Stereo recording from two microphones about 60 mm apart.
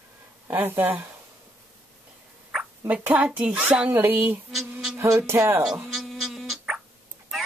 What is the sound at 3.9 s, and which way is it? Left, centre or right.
Speech, right.